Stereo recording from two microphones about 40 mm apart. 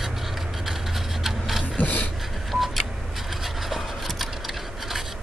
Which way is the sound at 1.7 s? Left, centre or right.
Left.